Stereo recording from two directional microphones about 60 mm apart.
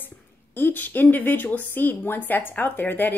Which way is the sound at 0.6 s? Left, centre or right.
Left.